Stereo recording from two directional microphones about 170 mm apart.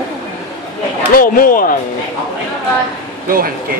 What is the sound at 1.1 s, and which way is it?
Speech, 55° left (ahead or behind).